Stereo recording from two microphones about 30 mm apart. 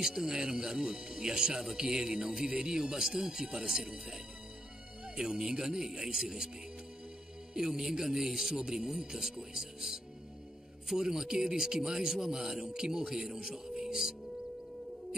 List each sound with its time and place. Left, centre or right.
0.0 s speech: centre
7.5 s speech: right
11.0 s speech: centre